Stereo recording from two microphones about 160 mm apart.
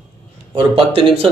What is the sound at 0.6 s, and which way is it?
Speech, 35° right (ahead or behind).